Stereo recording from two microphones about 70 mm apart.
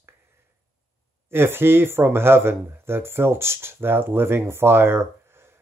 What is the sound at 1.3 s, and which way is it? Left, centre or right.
Speech, right.